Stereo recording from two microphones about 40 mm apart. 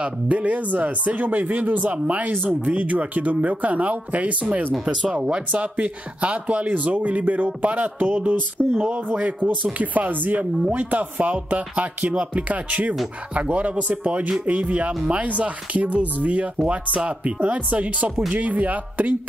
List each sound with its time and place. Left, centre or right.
0.0 s speech: right
2.3 s speech: right
2.7 s speech: right
4.8 s speech: right
5.5 s speech: right